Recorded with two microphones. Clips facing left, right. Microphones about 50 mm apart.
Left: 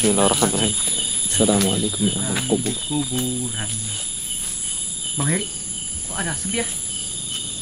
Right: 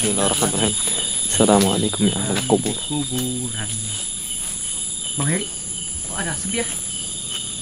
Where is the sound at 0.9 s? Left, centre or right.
Right.